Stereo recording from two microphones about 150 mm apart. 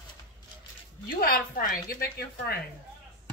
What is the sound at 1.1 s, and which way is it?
Speech, 75° left (ahead or behind).